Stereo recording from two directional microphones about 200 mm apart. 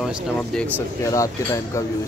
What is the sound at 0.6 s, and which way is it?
Speech, 10° left (ahead or behind).